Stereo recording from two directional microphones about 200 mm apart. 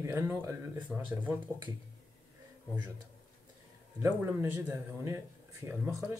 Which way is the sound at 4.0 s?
10° right (ahead or behind).